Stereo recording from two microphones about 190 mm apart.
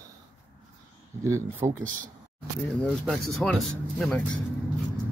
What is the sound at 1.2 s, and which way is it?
Speech, 15° right (ahead or behind).